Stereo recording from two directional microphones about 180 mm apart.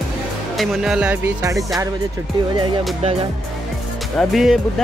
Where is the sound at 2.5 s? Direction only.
25° right (ahead or behind).